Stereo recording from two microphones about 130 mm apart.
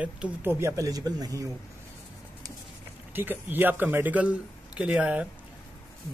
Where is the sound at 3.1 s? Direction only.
15° right (ahead or behind).